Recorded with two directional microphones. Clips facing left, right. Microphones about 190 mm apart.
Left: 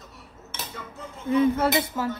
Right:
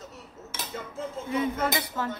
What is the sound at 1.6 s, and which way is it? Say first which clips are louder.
Cutlery: left 5 dB; 25° left (ahead or behind).